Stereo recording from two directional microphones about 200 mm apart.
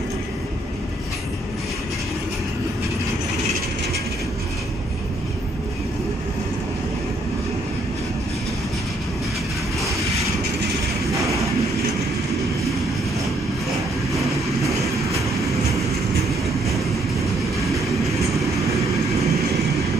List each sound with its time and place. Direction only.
18.0 s train: centre (ahead or behind)
19.2 s train: 15° right (ahead or behind)